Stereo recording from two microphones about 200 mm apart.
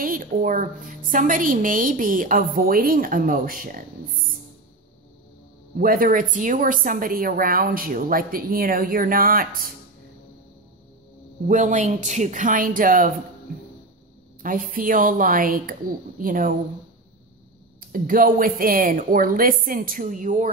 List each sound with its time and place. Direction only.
0.0 s a woman's voice: 45° right (ahead or behind)
5.8 s a woman's voice: 45° right (ahead or behind)
11.4 s speech: 40° right (ahead or behind)
14.4 s a woman's voice: 45° right (ahead or behind)
17.7 s a woman's voice: 45° right (ahead or behind)